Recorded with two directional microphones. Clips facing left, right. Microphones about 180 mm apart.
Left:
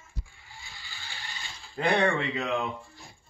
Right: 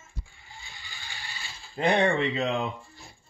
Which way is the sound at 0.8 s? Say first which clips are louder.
Left 1 dB; 15° right (ahead or behind).